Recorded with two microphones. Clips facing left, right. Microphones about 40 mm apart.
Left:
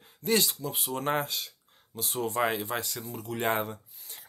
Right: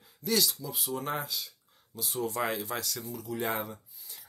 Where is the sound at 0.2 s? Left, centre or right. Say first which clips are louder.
Left 3 dB; left.